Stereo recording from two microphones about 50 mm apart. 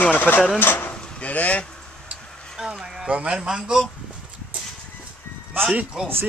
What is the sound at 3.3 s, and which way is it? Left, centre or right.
Speech, centre.